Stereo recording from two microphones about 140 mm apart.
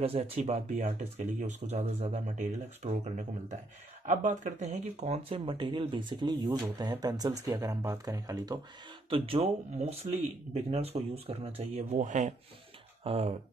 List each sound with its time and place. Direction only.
0.0 s speech: 45° right (ahead or behind)
4.0 s speech: 65° right (ahead or behind)
5.4 s speech: 35° right (ahead or behind)
9.1 s speech: 40° right (ahead or behind); by 12.4 s 60° right (ahead or behind)
13.0 s speech: 45° right (ahead or behind)